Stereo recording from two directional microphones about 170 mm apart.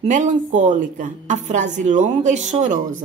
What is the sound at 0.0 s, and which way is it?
A woman's voice, 45° right (ahead or behind).